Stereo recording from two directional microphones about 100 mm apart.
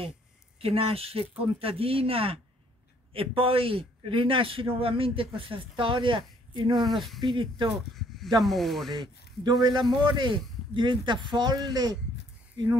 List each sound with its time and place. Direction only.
0.6 s a man's voice: 70° right (ahead or behind); by 6.9 s 50° right (ahead or behind)
6.9 s speech: centre (ahead or behind)
7.2 s a man's voice: 55° right (ahead or behind)
8.4 s speech: centre (ahead or behind)
9.0 s speech: 45° right (ahead or behind)